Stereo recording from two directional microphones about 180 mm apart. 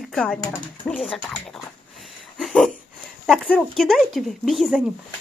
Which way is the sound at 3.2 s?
5° left (ahead or behind).